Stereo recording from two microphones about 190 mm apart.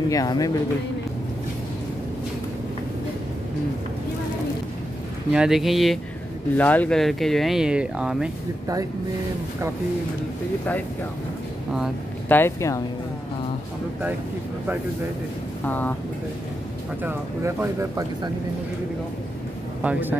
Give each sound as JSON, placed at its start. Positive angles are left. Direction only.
{"t": 0.1, "sound": "speech", "side_deg": 20}
{"t": 5.3, "sound": "speech", "side_deg": -5}
{"t": 12.3, "sound": "speech", "side_deg": 10}
{"t": 15.6, "sound": "speech", "side_deg": 10}
{"t": 17.0, "sound": "speech", "side_deg": -10}
{"t": 19.8, "sound": "speech", "side_deg": -10}